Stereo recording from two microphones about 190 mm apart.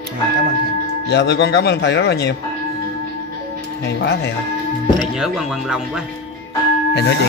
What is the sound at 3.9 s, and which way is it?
Speech, 60° left (ahead or behind).